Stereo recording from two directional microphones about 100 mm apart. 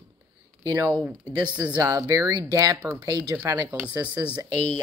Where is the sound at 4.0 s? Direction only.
45° right (ahead or behind).